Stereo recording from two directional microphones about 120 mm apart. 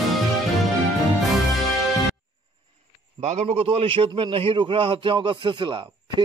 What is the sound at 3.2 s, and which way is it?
Speech, 70° right (ahead or behind).